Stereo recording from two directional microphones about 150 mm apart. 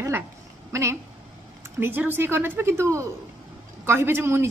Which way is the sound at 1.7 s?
15° right (ahead or behind).